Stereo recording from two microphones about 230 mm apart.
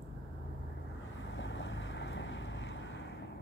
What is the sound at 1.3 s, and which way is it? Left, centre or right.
Boat, left.